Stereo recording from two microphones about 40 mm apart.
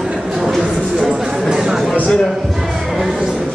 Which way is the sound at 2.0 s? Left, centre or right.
Centre.